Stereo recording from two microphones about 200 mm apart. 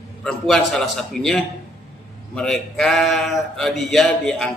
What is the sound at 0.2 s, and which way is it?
A man's voice, centre (ahead or behind).